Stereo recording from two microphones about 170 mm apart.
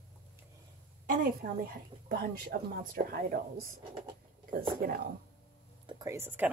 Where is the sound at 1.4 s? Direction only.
60° right (ahead or behind).